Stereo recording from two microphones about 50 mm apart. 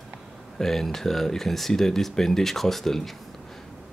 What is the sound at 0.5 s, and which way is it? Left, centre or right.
Speech, centre.